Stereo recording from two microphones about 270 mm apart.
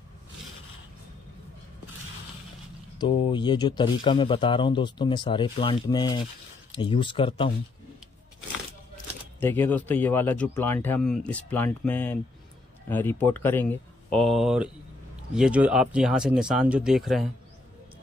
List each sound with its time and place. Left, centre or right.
3.0 s speech: centre
9.4 s speech: centre